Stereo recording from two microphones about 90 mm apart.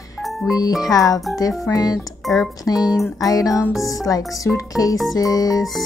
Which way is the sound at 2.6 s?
45° left (ahead or behind).